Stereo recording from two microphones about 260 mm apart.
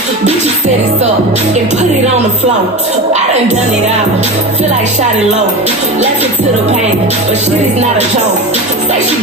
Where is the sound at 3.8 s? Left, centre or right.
Right.